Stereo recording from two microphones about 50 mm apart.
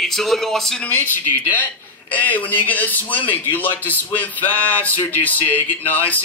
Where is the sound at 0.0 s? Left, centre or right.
Centre.